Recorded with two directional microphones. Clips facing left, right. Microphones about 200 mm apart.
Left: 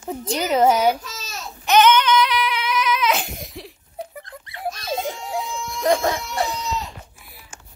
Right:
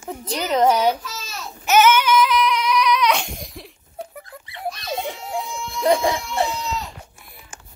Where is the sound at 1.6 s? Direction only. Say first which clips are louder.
Even; 5° right (ahead or behind).